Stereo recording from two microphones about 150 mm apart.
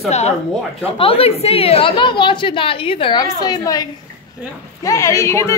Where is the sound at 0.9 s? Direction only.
40° left (ahead or behind).